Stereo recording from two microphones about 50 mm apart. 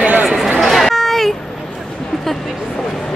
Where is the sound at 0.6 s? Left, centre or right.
Centre.